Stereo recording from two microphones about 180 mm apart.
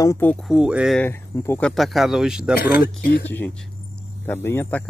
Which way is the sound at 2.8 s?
55° left (ahead or behind).